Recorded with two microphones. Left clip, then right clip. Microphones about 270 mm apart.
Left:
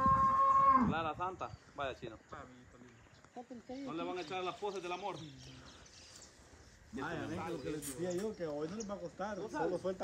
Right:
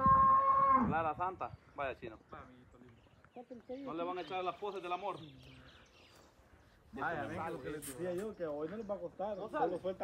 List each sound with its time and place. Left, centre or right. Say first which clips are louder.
0.0 s livestock: right 2 dB; centre
3.8 s speech: right 1 dB; centre
7.0 s speech: right 3 dB; centre
8.0 s speech: even; left